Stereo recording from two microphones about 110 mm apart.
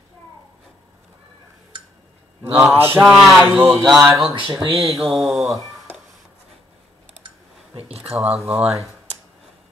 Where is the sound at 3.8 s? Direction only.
5° right (ahead or behind).